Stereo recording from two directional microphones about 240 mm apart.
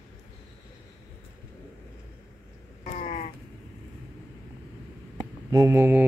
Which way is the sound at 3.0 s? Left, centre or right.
Left.